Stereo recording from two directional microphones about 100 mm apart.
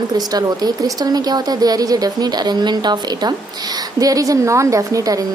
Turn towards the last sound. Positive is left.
turn(degrees=-35)  # may be behind; listen again after turning